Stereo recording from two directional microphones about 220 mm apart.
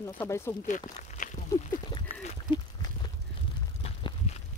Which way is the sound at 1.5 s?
25° left (ahead or behind).